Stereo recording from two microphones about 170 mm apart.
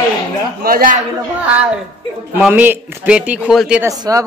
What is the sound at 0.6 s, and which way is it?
Speech, 55° right (ahead or behind).